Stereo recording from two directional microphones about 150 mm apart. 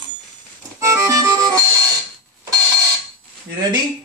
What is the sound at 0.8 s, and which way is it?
Accordion, 20° right (ahead or behind).